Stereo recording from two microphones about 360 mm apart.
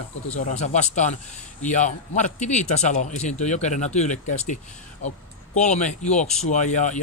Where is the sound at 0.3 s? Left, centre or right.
Centre.